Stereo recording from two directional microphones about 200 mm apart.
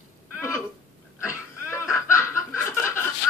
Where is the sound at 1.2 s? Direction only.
15° left (ahead or behind).